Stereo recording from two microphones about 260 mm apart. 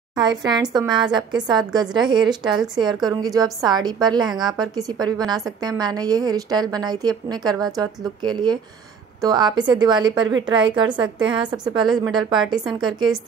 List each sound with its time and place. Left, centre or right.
0.1 s a woman's voice: centre
2.5 s a woman's voice: centre
3.1 s a woman's voice: centre